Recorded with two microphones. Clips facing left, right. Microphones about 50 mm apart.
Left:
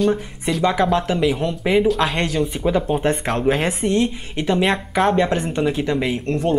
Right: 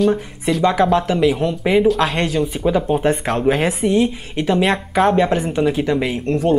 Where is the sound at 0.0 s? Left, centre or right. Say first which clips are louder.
Right 2 dB; centre.